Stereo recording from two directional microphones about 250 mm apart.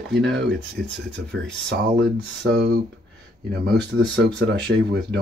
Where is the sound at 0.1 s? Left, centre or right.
Right.